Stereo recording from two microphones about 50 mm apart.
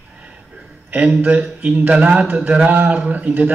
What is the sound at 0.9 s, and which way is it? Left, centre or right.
A man's voice, right.